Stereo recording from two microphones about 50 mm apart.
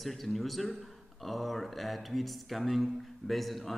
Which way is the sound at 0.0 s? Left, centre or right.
Centre.